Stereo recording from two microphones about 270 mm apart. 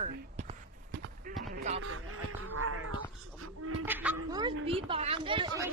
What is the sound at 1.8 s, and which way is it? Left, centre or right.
Speech, right.